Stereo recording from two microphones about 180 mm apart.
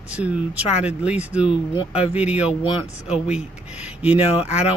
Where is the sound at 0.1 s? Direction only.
5° right (ahead or behind).